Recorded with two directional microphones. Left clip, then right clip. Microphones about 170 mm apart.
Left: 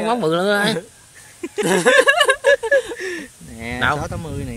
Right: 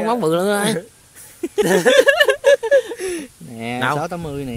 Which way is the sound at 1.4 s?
50° right (ahead or behind).